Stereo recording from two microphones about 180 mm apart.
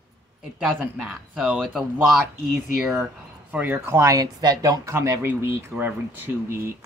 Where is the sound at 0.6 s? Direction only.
5° right (ahead or behind).